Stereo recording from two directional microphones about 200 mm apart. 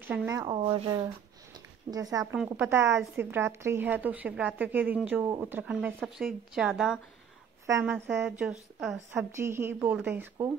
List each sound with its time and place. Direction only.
0.1 s speech: 5° right (ahead or behind)
0.4 s speech: 20° right (ahead or behind)
2.3 s a woman's voice: 5° right (ahead or behind)
7.6 s speech: 10° right (ahead or behind)